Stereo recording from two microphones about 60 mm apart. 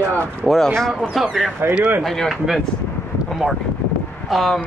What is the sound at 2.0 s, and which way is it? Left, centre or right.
Speech, centre.